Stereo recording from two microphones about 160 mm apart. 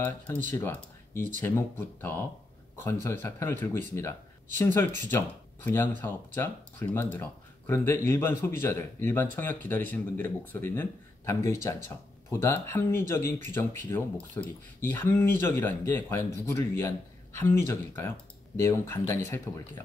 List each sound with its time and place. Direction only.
0.0 s speech: 10° left (ahead or behind)